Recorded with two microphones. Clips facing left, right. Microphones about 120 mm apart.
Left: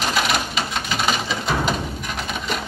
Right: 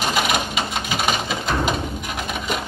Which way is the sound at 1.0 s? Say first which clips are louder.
Even; 50° right (ahead or behind).